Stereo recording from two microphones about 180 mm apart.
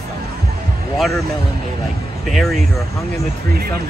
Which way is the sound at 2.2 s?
Centre (ahead or behind).